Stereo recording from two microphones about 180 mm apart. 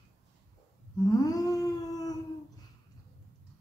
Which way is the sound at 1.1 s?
20° left (ahead or behind).